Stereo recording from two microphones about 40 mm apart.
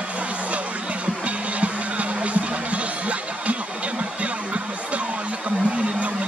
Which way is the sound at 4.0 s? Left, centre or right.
Right.